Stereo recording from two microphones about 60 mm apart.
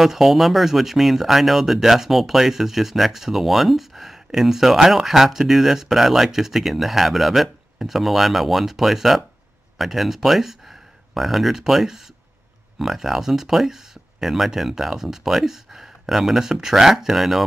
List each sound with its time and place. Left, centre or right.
0.0 s speech: centre